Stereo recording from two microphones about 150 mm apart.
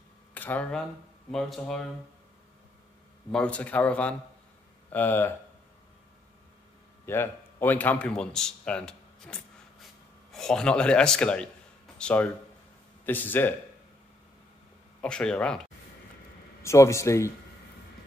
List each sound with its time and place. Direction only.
0.3 s a man's voice: 10° left (ahead or behind)
3.3 s speech: 5° left (ahead or behind)
7.1 s a man's voice: 15° left (ahead or behind)
15.0 s a man's voice: 5° left (ahead or behind)
16.6 s speech: 20° left (ahead or behind)